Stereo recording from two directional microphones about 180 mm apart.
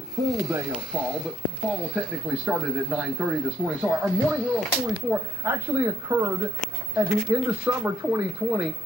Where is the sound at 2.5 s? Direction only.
5° right (ahead or behind).